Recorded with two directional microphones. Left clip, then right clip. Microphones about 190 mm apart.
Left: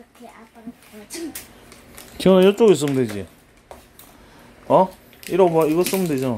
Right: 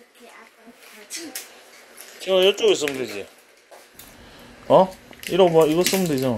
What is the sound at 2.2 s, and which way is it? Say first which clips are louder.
Speech: left 4 dB; 20° left (ahead or behind).